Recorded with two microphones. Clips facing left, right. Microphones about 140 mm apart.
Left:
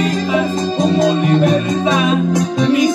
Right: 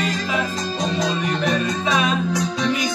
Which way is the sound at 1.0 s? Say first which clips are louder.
Left 9 dB; 45° left (ahead or behind).